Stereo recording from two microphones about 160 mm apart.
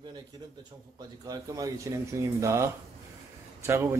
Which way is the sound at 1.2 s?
20° right (ahead or behind).